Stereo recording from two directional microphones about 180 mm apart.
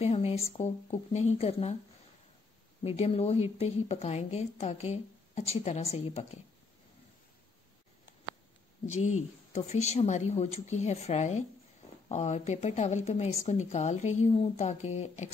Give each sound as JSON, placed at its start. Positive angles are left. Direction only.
{"t": 0.0, "sound": "a woman's voice", "side_deg": 35}
{"t": 2.8, "sound": "a woman's voice", "side_deg": 35}
{"t": 8.8, "sound": "a woman's voice", "side_deg": 40}